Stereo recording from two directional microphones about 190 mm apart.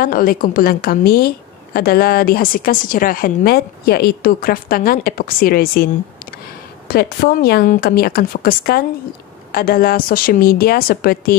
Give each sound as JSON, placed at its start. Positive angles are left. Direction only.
{"t": 0.0, "sound": "a woman's voice", "side_deg": 50}
{"t": 6.9, "sound": "a woman's voice", "side_deg": 55}